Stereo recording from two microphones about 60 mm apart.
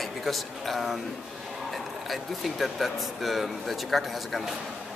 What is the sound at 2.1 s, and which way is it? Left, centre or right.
Speech, centre.